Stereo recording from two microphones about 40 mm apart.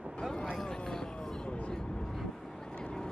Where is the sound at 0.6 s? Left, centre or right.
Centre.